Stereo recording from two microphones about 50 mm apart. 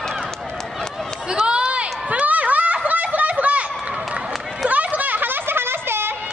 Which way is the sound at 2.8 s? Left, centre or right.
Right.